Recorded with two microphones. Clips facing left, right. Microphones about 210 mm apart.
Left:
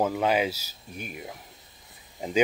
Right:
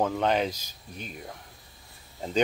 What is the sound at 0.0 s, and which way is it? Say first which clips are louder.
Speech: left 1 dB; 5° left (ahead or behind).